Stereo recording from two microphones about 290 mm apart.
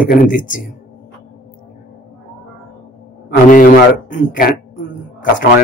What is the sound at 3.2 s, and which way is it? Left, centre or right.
A man's voice, left.